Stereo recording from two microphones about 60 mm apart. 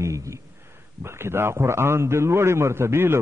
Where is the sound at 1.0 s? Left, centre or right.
Right.